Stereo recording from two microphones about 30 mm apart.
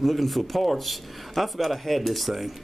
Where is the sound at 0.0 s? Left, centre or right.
Centre.